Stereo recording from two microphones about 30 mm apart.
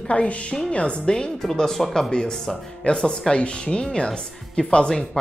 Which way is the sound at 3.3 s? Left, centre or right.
Left.